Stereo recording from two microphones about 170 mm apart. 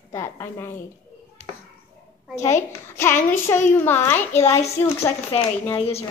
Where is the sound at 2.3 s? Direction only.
15° left (ahead or behind).